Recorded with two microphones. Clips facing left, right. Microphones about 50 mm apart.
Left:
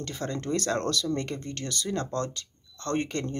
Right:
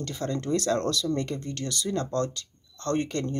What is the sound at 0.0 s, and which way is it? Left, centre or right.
Speech, left.